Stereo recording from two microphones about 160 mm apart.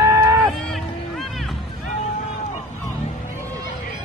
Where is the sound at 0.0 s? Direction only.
20° right (ahead or behind).